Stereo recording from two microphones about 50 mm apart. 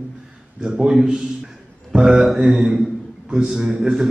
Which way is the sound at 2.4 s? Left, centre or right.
Right.